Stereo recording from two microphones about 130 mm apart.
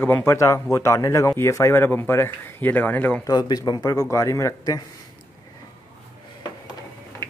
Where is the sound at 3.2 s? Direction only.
30° left (ahead or behind).